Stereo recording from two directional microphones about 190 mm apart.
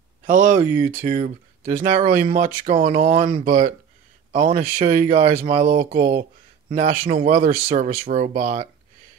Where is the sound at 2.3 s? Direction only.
45° right (ahead or behind).